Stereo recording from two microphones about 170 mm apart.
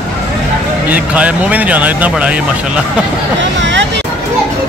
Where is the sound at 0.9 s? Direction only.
5° right (ahead or behind).